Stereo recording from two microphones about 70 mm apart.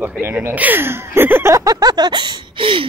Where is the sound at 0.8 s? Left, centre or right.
Right.